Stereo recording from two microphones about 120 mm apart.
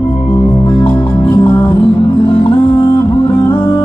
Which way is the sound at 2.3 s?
50° left (ahead or behind).